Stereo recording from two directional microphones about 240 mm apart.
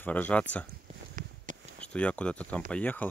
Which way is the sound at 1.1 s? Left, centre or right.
Right.